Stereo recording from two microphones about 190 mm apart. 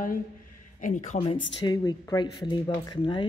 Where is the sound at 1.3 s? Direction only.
75° left (ahead or behind).